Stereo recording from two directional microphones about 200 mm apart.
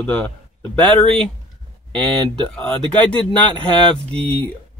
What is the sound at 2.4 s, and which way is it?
Speech, 5° left (ahead or behind).